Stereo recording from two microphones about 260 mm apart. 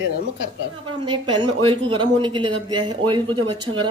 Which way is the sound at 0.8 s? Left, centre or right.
Centre.